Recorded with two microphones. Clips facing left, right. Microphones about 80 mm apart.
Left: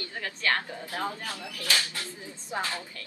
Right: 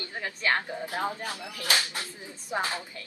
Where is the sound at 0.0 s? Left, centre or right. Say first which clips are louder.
Right 1 dB; right.